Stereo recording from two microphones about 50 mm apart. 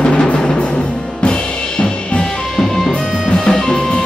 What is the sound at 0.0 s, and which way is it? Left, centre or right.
Music, left.